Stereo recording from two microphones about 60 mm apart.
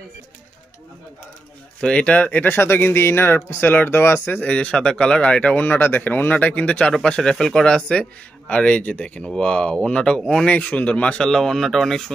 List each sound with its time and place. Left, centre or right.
1.8 s speech: centre; by 4.4 s left
4.4 s speech: left
10.4 s speech: left
11.2 s speech: centre